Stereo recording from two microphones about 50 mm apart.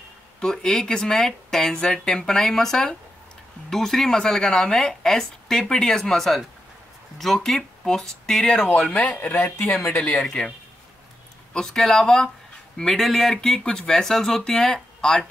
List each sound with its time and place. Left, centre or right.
0.4 s a woman's voice: centre
8.9 s speech: left
11.5 s a woman's voice: centre